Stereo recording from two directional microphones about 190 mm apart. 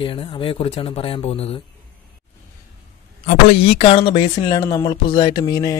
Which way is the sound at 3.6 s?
30° left (ahead or behind).